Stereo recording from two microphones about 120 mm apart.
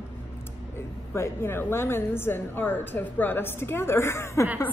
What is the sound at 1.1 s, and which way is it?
A woman's voice, 20° left (ahead or behind).